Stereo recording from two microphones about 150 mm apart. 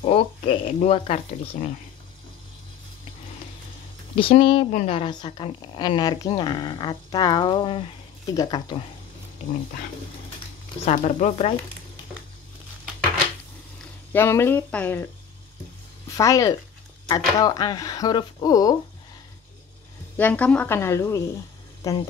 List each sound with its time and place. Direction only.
0.0 s speech: 40° left (ahead or behind)
4.1 s speech: 35° left (ahead or behind)
10.9 s speech: 50° left (ahead or behind)
14.1 s a woman's voice: 15° left (ahead or behind)
16.2 s speech: 20° left (ahead or behind)
20.2 s a woman's voice: 10° left (ahead or behind)